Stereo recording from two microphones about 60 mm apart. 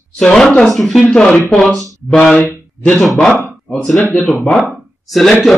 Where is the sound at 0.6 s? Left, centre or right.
Centre.